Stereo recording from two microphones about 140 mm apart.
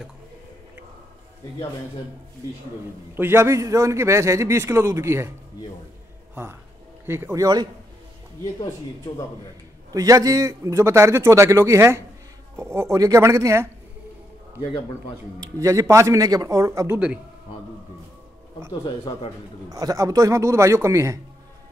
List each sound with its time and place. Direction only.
3.2 s a man's voice: 15° right (ahead or behind)
7.1 s speech: 15° right (ahead or behind)
9.9 s a man's voice: 25° right (ahead or behind)
15.4 s a man's voice: 25° right (ahead or behind)
18.9 s a man's voice: 35° left (ahead or behind)
19.7 s a man's voice: 25° right (ahead or behind)